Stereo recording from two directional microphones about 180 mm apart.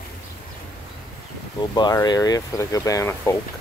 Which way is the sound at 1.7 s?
20° left (ahead or behind).